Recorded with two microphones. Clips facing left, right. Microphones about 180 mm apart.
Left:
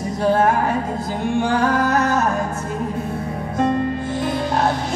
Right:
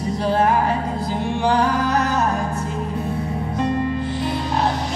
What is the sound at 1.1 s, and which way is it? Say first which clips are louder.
Music: even; 50° left (ahead or behind).